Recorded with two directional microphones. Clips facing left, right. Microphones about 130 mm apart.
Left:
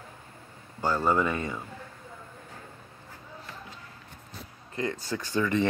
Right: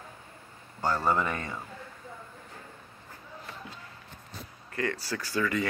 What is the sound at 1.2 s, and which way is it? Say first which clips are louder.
Speech: left 4 dB; 20° left (ahead or behind).